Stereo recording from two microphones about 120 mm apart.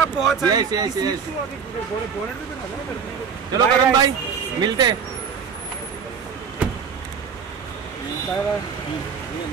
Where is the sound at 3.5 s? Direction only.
30° right (ahead or behind).